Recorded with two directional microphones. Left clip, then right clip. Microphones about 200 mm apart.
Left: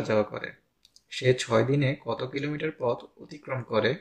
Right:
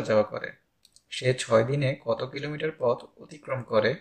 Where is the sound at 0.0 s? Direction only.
15° left (ahead or behind).